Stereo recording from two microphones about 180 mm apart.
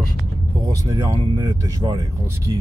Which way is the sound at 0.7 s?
20° right (ahead or behind).